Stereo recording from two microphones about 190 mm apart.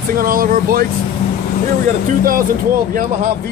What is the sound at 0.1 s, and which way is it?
Speech, 50° right (ahead or behind).